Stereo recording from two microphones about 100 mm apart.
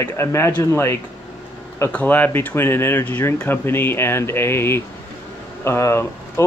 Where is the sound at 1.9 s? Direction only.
15° left (ahead or behind).